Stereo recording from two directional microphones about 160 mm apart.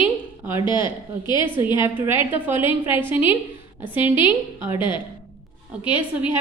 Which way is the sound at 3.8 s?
10° right (ahead or behind).